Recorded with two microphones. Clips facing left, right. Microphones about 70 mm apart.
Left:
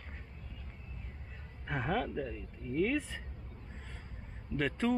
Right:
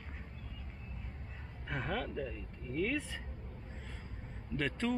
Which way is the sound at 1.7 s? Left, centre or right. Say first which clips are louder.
Left 4 dB; centre.